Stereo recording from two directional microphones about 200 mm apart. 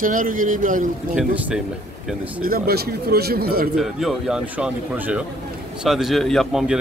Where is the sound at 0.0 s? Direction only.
40° right (ahead or behind).